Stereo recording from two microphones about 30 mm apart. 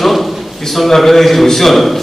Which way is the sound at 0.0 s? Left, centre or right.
Centre.